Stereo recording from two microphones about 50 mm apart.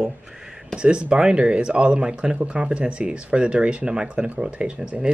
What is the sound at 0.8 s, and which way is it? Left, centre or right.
Speech, right.